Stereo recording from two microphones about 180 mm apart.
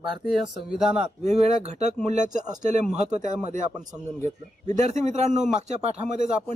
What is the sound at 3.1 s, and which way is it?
Speech, 45° right (ahead or behind).